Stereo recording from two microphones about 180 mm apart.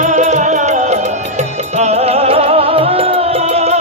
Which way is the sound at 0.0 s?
40° right (ahead or behind).